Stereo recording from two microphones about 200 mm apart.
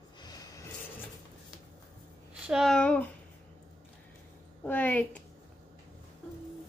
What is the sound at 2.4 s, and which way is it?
Speech, centre (ahead or behind).